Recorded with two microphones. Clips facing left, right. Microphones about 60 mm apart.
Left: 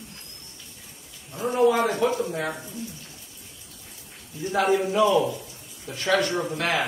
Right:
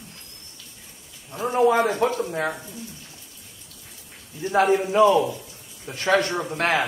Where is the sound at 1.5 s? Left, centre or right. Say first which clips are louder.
Right 1 dB; right.